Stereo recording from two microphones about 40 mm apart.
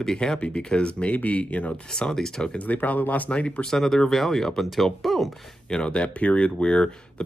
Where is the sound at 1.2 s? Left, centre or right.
Left.